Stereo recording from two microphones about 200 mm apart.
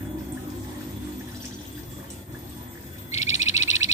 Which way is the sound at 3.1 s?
35° left (ahead or behind).